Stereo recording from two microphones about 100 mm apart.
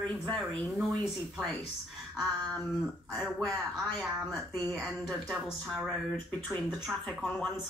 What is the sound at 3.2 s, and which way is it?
Speech, 5° left (ahead or behind).